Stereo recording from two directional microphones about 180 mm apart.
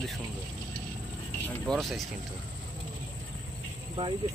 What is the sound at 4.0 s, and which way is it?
Speech, 35° right (ahead or behind).